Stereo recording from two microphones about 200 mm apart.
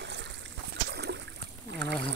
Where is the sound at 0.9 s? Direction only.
55° right (ahead or behind).